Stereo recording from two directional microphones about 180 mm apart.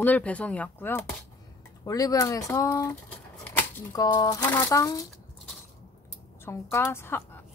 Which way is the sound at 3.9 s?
20° left (ahead or behind).